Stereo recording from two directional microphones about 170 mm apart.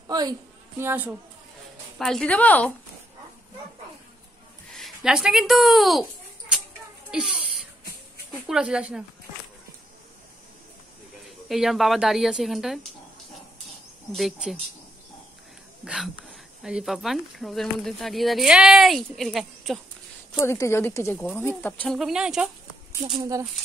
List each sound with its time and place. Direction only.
0.1 s speech: 20° right (ahead or behind)
2.0 s speech: centre (ahead or behind)
4.7 s speech: centre (ahead or behind)
7.1 s a child's voice: 5° right (ahead or behind)
8.5 s speech: 5° right (ahead or behind)
11.4 s speech: centre (ahead or behind)
14.1 s speech: centre (ahead or behind)
15.8 s speech: 5° right (ahead or behind)
20.3 s speech: 15° left (ahead or behind); by 22.5 s 5° right (ahead or behind)